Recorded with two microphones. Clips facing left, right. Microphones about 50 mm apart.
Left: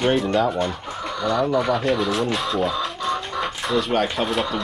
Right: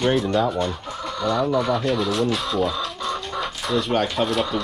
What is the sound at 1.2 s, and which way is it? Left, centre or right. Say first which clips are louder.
Speech: even; centre.